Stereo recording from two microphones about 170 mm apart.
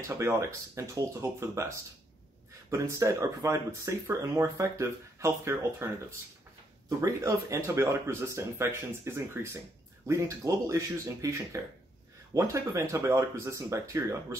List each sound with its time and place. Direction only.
0.2 s speech: 15° right (ahead or behind)
2.7 s speech: 15° right (ahead or behind)